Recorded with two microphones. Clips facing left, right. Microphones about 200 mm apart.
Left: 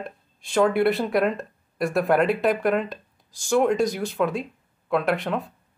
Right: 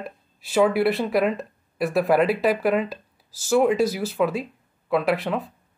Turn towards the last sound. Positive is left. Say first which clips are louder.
# right 1 dB
turn(degrees=0)  # may be behind; listen again after turning